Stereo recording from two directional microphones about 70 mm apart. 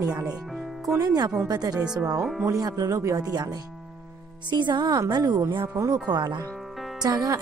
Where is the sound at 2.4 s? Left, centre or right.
Right.